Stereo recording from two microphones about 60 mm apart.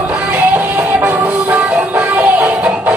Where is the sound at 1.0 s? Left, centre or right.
Right.